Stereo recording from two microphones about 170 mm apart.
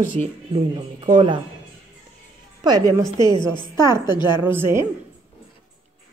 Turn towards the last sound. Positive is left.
turn(degrees=-15)  # may be behind; listen again after turning